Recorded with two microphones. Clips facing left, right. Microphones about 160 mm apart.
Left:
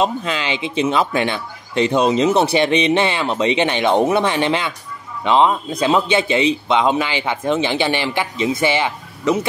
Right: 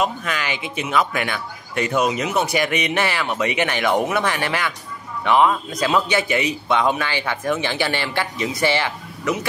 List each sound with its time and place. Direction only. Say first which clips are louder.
0.0 s speech: left 3 dB; 25° left (ahead or behind)